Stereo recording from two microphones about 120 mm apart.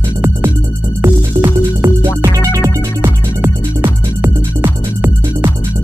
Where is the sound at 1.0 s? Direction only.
20° right (ahead or behind).